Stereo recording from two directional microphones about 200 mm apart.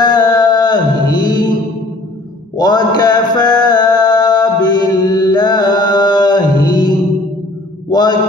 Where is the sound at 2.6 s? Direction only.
20° left (ahead or behind).